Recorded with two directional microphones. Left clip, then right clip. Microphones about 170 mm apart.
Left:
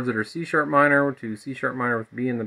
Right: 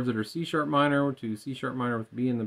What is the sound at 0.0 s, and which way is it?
Speech, 20° right (ahead or behind).